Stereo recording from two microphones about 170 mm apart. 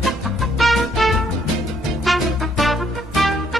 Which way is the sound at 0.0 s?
Centre (ahead or behind).